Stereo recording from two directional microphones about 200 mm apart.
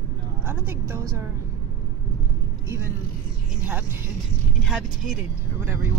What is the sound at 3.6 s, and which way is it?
Speech, 10° right (ahead or behind).